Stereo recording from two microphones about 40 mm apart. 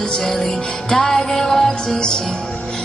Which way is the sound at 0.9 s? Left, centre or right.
Centre.